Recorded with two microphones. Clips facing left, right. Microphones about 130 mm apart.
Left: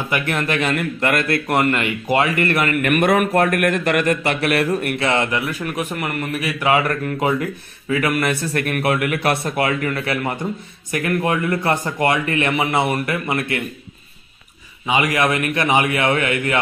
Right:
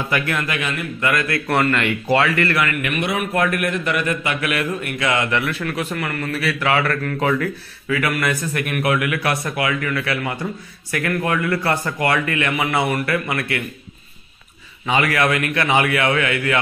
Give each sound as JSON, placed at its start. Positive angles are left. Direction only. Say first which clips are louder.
{"t": 0.1, "sound": "speech", "louder": "left 3 dB", "side_deg": 30}
{"t": 1.3, "sound": "a man's voice", "louder": "left 1 dB", "side_deg": 20}
{"t": 2.8, "sound": "a man's voice", "louder": "left 6 dB", "side_deg": 50}
{"t": 4.9, "sound": "speech", "louder": "left 1 dB", "side_deg": 30}
{"t": 5.5, "sound": "a man's voice", "louder": "even", "side_deg": 15}
{"t": 8.5, "sound": "speech", "louder": "left 1 dB", "side_deg": 40}
{"t": 14.9, "sound": "speech", "louder": "even", "side_deg": 15}